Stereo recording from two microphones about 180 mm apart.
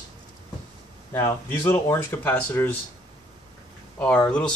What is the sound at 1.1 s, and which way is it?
Speech, 15° left (ahead or behind).